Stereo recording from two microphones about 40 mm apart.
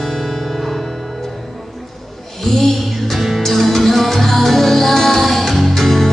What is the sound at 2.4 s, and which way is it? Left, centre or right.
Music, centre.